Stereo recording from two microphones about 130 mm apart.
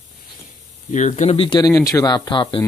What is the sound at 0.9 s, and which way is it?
Speech, 65° left (ahead or behind).